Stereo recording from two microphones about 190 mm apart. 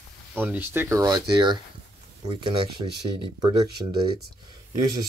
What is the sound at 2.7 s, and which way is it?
Speech, 25° right (ahead or behind).